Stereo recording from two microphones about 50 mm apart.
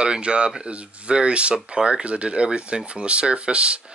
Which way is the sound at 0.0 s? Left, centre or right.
Centre.